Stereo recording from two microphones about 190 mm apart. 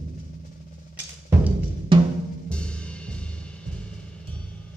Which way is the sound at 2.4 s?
5° left (ahead or behind).